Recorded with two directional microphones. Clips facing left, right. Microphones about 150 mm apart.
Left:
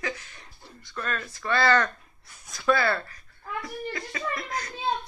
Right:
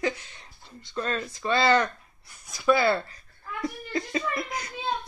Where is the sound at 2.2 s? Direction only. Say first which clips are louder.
Right 2 dB; centre (ahead or behind).